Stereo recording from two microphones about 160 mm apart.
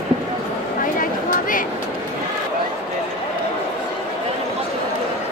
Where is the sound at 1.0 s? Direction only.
60° left (ahead or behind).